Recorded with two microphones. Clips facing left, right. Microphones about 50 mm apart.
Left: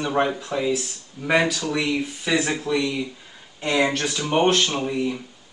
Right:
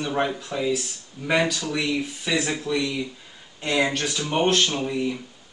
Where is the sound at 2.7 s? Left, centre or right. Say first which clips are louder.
Left 2 dB; centre.